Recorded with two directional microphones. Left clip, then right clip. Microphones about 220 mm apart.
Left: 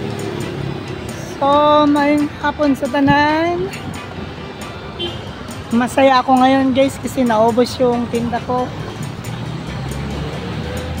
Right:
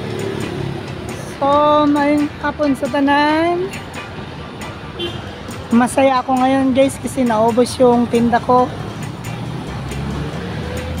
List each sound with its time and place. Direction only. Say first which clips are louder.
1.4 s speech: left 1 dB; centre (ahead or behind)
5.9 s speech: left 5 dB; 5° left (ahead or behind); by 8.0 s 10° right (ahead or behind)
8.3 s speech: right 8 dB; 30° right (ahead or behind)